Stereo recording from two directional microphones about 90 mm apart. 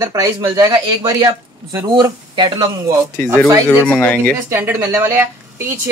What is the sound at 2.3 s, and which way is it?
Speech, 60° right (ahead or behind).